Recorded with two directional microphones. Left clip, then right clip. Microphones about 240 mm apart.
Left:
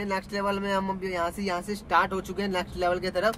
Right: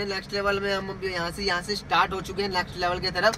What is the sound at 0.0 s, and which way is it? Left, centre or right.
Speech, left.